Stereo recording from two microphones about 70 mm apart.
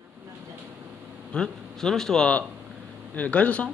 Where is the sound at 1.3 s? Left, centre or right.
Centre.